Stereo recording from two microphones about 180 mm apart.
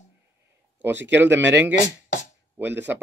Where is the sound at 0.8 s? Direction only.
10° right (ahead or behind).